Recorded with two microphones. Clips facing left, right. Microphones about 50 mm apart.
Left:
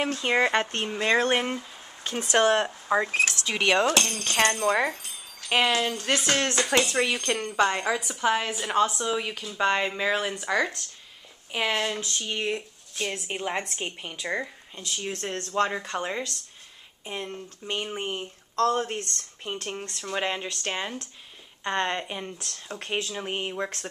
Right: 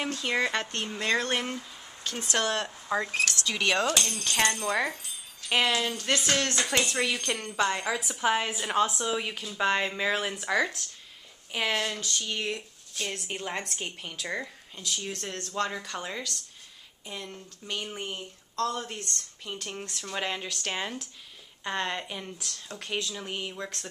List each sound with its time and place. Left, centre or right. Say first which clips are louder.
0.1 s speech: left 4 dB; left
5.5 s a woman's voice: left 3 dB; centre
15.0 s speech: left 8 dB; left
20.0 s speech: left 4 dB; centre
23.1 s speech: left 5 dB; left